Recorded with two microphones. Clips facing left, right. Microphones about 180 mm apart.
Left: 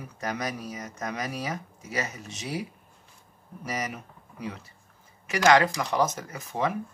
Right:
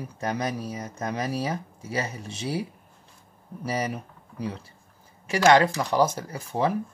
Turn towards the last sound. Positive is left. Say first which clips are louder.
# right 3 dB
turn(degrees=-35)  # may be behind; listen again after turning